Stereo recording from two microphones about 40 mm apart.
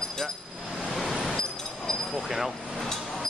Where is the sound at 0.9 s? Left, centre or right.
Centre.